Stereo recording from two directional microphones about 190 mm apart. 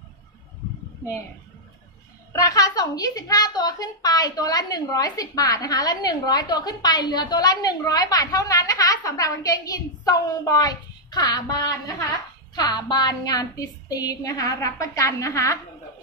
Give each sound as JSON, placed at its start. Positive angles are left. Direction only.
{"t": 2.3, "sound": "a woman's voice", "side_deg": 20}